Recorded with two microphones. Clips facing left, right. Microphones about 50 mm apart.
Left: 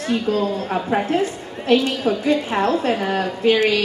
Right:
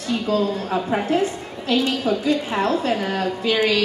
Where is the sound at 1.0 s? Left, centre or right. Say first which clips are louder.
Even; left.